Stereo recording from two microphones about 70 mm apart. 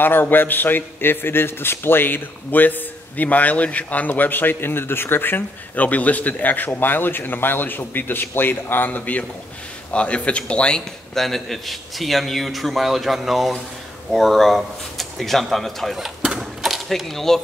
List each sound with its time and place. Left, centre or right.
0.0 s a man's voice: left
11.1 s a man's voice: centre
16.2 s a sound: centre